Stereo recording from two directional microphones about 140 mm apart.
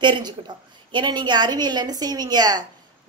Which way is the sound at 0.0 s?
35° right (ahead or behind).